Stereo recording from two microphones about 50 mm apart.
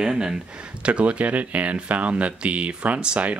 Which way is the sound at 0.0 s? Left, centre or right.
Centre.